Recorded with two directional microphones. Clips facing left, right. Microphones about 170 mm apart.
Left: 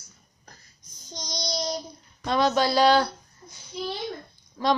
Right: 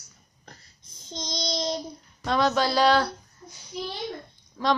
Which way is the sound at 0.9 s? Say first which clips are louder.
Right 2 dB; 25° right (ahead or behind).